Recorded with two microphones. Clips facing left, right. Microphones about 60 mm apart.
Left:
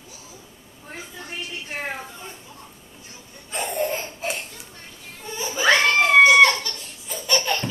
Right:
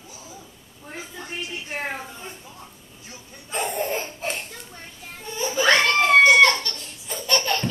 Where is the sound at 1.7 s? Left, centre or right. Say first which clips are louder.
Even; centre.